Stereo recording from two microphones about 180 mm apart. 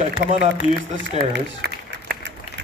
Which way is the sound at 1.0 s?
80° right.